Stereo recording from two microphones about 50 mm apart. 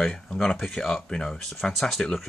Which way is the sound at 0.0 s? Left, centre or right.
Centre.